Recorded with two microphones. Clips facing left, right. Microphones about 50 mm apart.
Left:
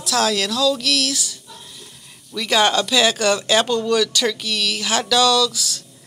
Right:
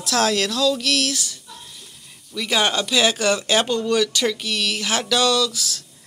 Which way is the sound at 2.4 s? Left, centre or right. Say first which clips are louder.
Left 3 dB; right.